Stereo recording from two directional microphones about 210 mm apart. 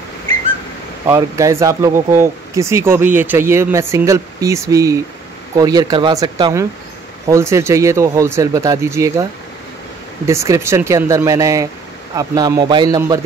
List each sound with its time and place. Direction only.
1.0 s speech: 15° right (ahead or behind)
10.2 s speech: 15° right (ahead or behind)